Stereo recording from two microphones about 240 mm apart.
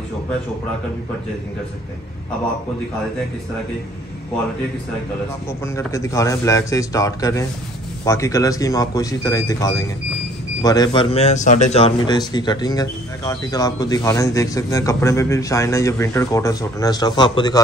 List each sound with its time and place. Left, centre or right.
5.8 s a man's voice: centre